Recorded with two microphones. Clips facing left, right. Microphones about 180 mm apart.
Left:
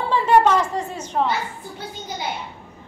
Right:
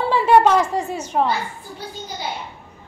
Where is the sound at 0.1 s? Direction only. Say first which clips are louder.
Right 2 dB; 10° right (ahead or behind).